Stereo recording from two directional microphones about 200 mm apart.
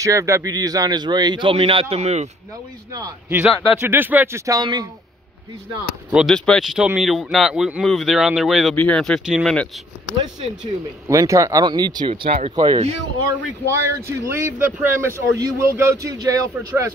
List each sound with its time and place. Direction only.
0.0 s speech: 15° right (ahead or behind); by 2.2 s 35° right (ahead or behind)
2.9 s speech: 15° right (ahead or behind)
6.1 s speech: centre (ahead or behind)
11.1 s speech: 15° right (ahead or behind)
13.7 s speech: 15° right (ahead or behind)